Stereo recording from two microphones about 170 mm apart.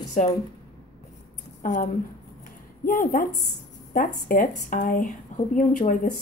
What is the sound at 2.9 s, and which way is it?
Speech, 55° left (ahead or behind).